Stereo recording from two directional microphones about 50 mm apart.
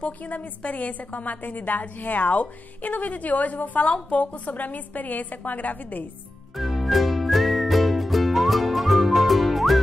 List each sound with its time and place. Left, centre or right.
0.0 s a woman's voice: left
6.5 s music: centre